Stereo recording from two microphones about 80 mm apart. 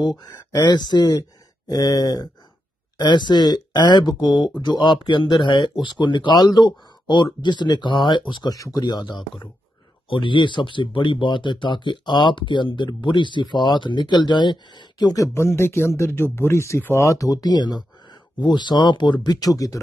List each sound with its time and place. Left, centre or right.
0.2 s speech: left
3.0 s speech: left
8.5 s speech: left
8.8 s speech: left
10.0 s speech: left
15.3 s speech: left
19.4 s speech: left